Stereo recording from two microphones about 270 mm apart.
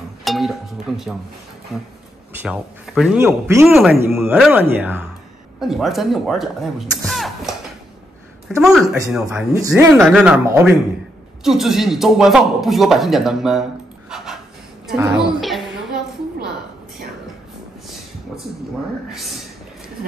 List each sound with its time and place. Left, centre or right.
0.2 s speech: centre
2.4 s speech: centre
7.1 s music: centre
8.5 s speech: centre
14.1 s a sound: centre